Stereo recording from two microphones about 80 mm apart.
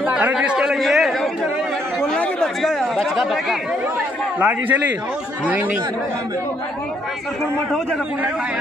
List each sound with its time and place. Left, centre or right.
0.0 s a man's voice: centre
0.7 s chatter: centre
2.0 s speech: centre
4.4 s a man's voice: right